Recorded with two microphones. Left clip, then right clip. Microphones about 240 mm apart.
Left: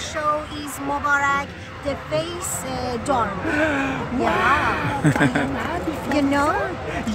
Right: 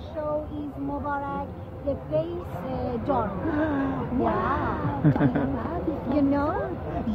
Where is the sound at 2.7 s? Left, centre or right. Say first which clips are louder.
Left 4 dB; centre.